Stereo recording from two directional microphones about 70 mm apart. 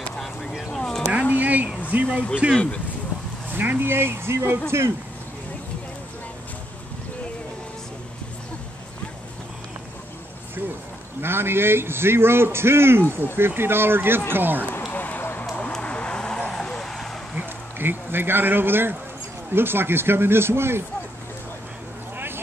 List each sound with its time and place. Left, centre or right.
0.2 s a sound: centre
1.3 s a sound: right
2.5 s speech: centre
3.4 s a man's voice: right
11.1 s a man's voice: right
14.9 s fire: left
15.7 s vehicle: centre
17.4 s a man's voice: right